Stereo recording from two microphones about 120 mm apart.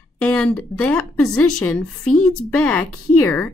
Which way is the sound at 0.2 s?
10° left (ahead or behind).